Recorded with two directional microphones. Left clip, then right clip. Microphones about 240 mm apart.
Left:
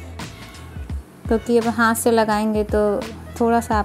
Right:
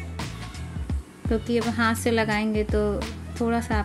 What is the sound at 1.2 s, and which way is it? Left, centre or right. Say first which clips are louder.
Speech: left 6 dB; centre.